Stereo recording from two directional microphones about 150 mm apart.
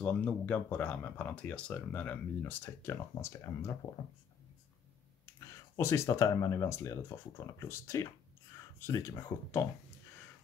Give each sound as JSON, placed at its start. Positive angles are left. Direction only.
{"t": 0.0, "sound": "speech", "side_deg": 10}
{"t": 5.2, "sound": "speech", "side_deg": 20}